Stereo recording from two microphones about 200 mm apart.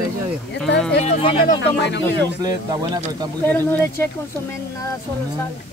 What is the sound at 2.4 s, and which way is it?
Speech, 20° right (ahead or behind).